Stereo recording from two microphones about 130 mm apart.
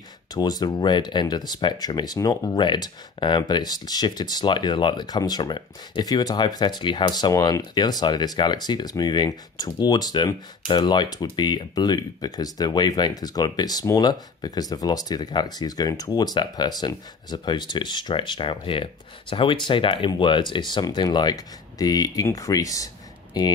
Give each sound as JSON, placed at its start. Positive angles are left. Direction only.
{"t": 0.3, "sound": "speech", "side_deg": 30}